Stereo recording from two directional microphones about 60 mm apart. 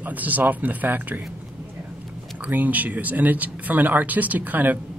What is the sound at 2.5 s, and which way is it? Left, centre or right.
Speech, right.